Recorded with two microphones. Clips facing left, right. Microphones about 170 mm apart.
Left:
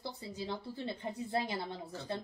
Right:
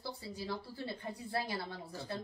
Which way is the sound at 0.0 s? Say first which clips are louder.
Left 1 dB; 20° left (ahead or behind).